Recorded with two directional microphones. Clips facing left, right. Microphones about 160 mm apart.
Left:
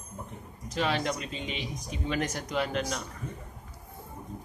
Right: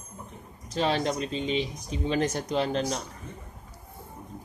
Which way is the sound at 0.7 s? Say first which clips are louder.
Right 3 dB; 30° right (ahead or behind).